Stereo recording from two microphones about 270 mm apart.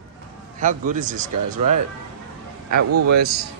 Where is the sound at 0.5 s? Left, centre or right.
Right.